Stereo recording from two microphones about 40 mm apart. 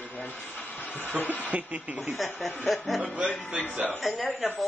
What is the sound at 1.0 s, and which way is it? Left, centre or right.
Speech, left.